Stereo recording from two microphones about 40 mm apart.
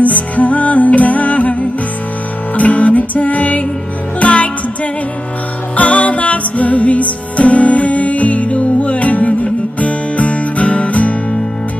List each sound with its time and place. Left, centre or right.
0.0 s music: left
5.8 s music: left